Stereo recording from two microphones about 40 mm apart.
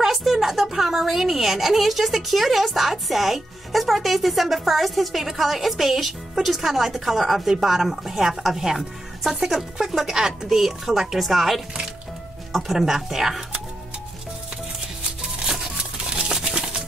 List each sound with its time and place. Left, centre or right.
0.0 s a woman's voice: centre
12.6 s a woman's voice: centre
15.8 s a sound: right
16.3 s music: centre